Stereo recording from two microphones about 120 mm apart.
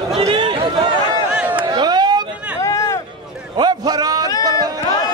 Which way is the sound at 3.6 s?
35° right (ahead or behind).